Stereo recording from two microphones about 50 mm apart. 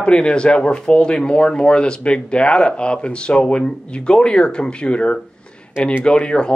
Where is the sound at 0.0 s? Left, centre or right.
Centre.